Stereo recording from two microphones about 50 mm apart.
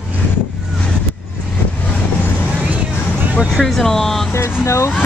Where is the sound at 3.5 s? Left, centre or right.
Centre.